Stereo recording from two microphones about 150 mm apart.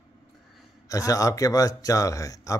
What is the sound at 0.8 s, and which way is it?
Speech, 20° left (ahead or behind).